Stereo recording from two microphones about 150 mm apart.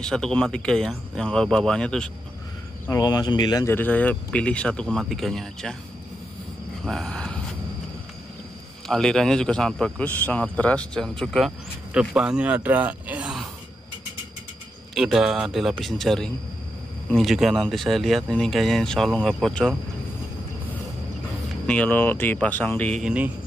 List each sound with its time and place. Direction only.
0.0 s speech: 5° left (ahead or behind)
2.9 s speech: 25° left (ahead or behind)
3.7 s speech: 10° left (ahead or behind)
6.8 s a sound: centre (ahead or behind)
8.8 s speech: 5° left (ahead or behind)
15.0 s speech: 5° right (ahead or behind)
21.6 s speech: 10° left (ahead or behind)
23.0 s speech: 10° right (ahead or behind)